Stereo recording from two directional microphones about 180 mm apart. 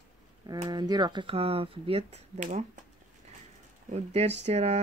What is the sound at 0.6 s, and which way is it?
Speech, 25° right (ahead or behind).